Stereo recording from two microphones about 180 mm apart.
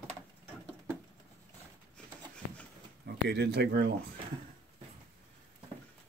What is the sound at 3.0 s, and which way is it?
Speech, 70° right (ahead or behind).